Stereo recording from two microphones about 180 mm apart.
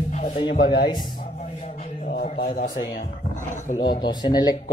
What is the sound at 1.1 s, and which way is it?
Music, 45° left (ahead or behind).